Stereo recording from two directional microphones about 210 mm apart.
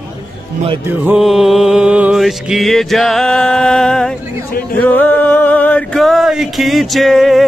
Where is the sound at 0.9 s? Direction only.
5° right (ahead or behind).